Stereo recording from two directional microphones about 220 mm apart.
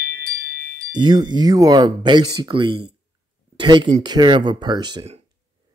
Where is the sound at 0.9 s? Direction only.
20° right (ahead or behind).